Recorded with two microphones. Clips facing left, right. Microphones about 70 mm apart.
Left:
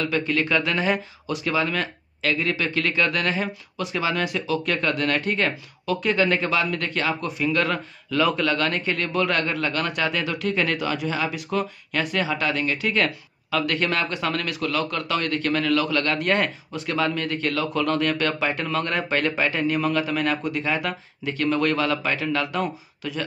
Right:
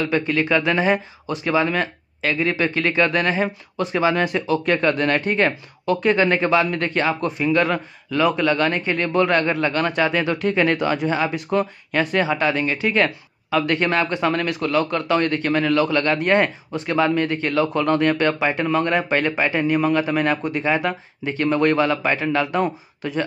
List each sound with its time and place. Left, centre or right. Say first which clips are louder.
0.3 s a man's voice: right 3 dB; centre
7.4 s a man's voice: right 4 dB; centre